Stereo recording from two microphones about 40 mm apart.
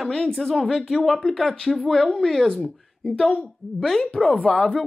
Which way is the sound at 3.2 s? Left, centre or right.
Left.